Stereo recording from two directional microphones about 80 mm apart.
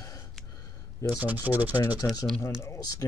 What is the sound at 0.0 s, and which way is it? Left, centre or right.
Gasp, left.